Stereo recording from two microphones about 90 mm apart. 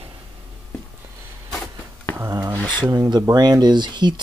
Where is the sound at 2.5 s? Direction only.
15° left (ahead or behind).